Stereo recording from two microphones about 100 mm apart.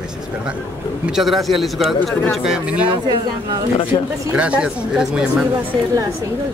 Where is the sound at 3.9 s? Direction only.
55° left (ahead or behind).